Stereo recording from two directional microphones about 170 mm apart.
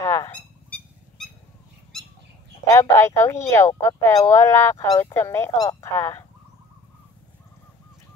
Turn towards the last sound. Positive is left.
turn(degrees=15)  # may be behind; listen again after turning